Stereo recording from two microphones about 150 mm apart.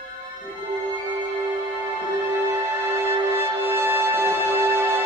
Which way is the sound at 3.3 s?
15° right (ahead or behind).